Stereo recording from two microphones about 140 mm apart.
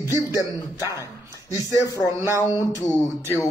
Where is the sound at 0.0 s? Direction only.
20° right (ahead or behind).